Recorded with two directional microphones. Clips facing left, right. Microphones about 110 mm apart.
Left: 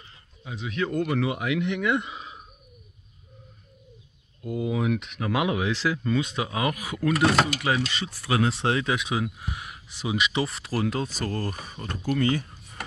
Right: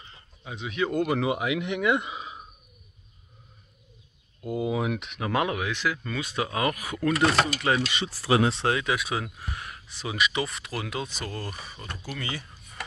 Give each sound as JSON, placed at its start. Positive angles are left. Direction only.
{"t": 0.0, "sound": "a sound", "side_deg": 0}
{"t": 1.0, "sound": "speech", "side_deg": -20}
{"t": 4.5, "sound": "speech", "side_deg": -15}
{"t": 5.5, "sound": "speech", "side_deg": 30}
{"t": 8.1, "sound": "speech", "side_deg": -30}
{"t": 8.6, "sound": "speech", "side_deg": 25}
{"t": 9.1, "sound": "speech", "side_deg": 10}